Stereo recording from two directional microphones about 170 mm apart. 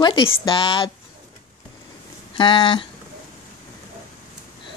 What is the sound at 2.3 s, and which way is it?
Speech, 30° left (ahead or behind).